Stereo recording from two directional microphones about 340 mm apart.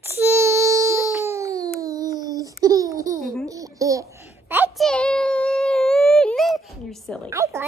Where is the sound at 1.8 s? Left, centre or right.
Centre.